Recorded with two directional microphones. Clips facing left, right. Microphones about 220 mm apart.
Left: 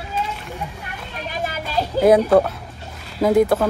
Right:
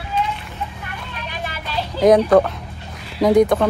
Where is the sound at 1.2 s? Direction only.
40° left (ahead or behind).